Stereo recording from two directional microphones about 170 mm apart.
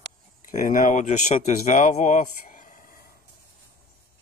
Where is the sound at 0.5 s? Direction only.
55° left (ahead or behind).